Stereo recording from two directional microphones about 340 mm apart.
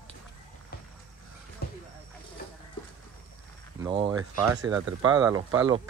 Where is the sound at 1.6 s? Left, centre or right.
Left.